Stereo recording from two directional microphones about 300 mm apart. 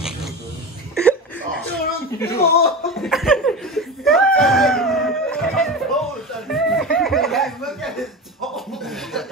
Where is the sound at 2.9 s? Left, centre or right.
Centre.